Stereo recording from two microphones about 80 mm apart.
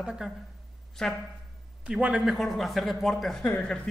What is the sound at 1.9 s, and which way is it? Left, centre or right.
Speech, centre.